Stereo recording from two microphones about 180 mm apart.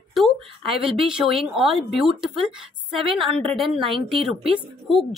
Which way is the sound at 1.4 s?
Centre (ahead or behind).